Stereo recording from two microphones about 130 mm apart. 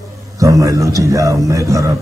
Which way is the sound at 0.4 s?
25° right (ahead or behind).